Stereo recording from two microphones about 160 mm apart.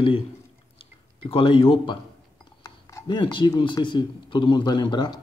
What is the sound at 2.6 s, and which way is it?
Speech, 20° left (ahead or behind).